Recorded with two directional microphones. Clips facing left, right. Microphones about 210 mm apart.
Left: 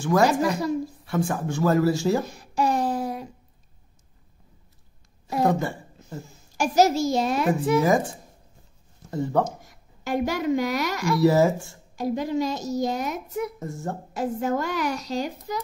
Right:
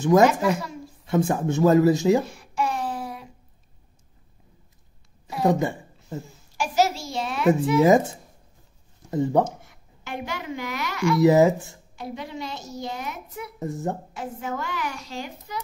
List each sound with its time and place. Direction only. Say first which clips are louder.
0.0 s speech: right 4 dB; 20° right (ahead or behind)
0.3 s a woman's voice: left 1 dB; 40° left (ahead or behind)
1.0 s speech: right 8 dB; 20° right (ahead or behind)
2.2 s a sound: left 3 dB; 40° left (ahead or behind)
5.4 s speech: right 1 dB; 15° right (ahead or behind)
6.5 s a woman's voice: left 3 dB; 45° left (ahead or behind)
7.8 s speech: right 4 dB; 20° right (ahead or behind)
9.1 s speech: right 4 dB; 15° right (ahead or behind)
9.6 s a woman's voice: even; 40° left (ahead or behind)
11.1 s speech: right 2 dB; 20° right (ahead or behind)
11.9 s a woman's voice: left 9 dB; 40° left (ahead or behind)
13.6 s speech: right 4 dB; 15° right (ahead or behind)
14.1 s a woman's voice: left 6 dB; 40° left (ahead or behind)